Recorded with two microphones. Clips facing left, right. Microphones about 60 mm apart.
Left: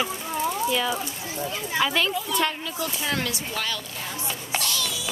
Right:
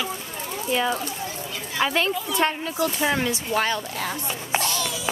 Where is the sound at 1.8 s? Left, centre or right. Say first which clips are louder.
Right 1 dB; right.